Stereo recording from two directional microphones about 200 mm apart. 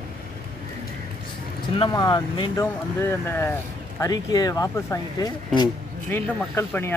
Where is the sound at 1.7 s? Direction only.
20° left (ahead or behind).